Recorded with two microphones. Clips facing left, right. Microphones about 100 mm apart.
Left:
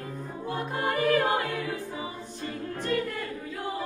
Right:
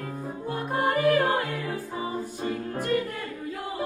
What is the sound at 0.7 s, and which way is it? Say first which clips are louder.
Music: right 3 dB; 40° right (ahead or behind).